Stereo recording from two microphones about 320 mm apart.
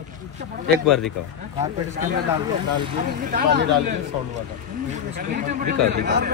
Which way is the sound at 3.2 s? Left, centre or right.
Right.